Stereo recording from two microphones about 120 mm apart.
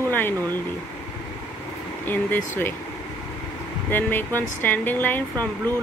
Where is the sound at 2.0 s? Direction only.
15° left (ahead or behind).